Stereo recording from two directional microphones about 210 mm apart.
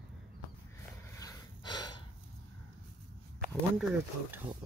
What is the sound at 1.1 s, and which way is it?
Snort, 20° left (ahead or behind).